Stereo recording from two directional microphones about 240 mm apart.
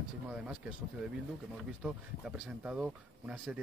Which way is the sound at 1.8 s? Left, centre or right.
Centre.